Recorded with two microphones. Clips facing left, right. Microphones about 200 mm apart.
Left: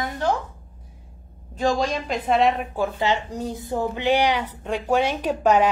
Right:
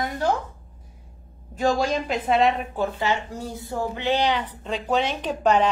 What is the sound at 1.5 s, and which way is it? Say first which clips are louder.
A woman's voice: even; 5° right (ahead or behind).